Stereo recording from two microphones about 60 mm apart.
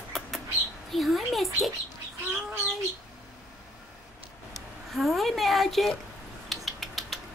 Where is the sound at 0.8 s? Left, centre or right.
Centre.